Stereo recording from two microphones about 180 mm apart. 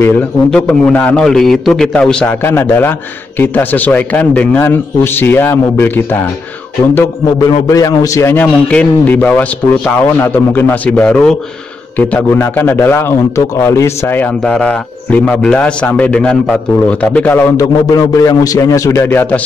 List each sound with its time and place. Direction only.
0.0 s a man's voice: 5° left (ahead or behind)